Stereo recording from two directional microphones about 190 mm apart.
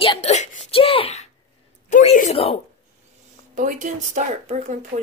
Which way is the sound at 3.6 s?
40° right (ahead or behind).